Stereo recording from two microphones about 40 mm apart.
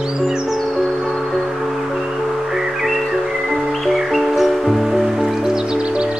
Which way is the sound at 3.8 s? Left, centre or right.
Centre.